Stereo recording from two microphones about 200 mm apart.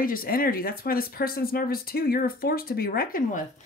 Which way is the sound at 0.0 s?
45° left (ahead or behind).